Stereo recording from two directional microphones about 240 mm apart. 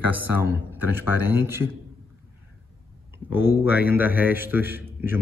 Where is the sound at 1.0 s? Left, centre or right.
Left.